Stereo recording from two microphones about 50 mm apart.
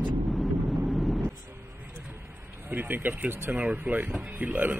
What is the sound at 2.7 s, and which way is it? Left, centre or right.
Speech, right.